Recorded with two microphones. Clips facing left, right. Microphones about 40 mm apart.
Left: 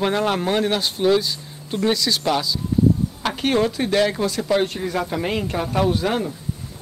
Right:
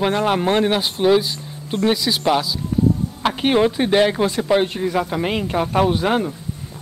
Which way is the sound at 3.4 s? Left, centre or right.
Right.